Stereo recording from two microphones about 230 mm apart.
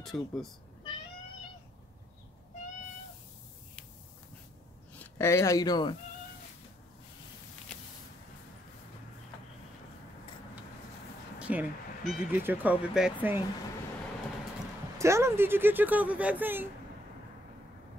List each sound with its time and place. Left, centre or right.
0.0 s speech: centre
4.9 s speech: centre
11.3 s speech: centre
15.0 s speech: centre